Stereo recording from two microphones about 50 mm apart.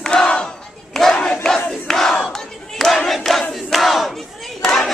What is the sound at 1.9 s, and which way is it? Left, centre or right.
Crowd, centre.